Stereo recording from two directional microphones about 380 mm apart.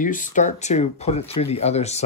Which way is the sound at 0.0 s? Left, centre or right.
Left.